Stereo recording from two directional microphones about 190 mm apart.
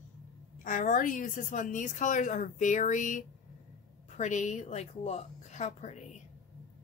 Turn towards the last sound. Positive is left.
turn(degrees=35)  # may be behind; listen again after turning